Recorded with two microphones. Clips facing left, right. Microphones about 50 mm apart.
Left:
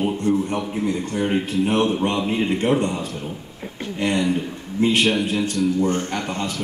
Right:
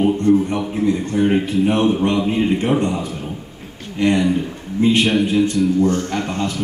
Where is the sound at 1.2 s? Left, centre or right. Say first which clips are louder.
Right 5 dB; centre.